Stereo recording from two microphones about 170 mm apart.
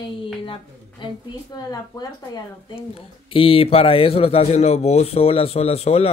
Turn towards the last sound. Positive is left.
turn(degrees=35)  # may be behind; listen again after turning